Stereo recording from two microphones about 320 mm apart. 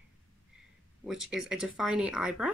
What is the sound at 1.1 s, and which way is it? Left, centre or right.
Speech, centre.